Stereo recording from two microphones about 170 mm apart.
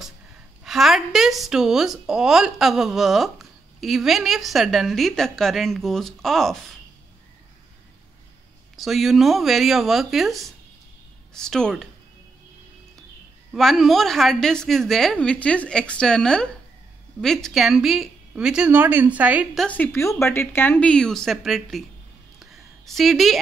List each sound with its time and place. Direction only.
0.7 s a woman's voice: centre (ahead or behind)
8.7 s a woman's voice: centre (ahead or behind)
13.5 s a woman's voice: centre (ahead or behind)
22.4 s a sound: centre (ahead or behind)